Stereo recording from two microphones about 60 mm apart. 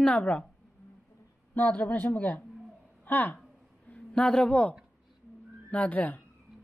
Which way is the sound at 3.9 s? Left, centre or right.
Centre.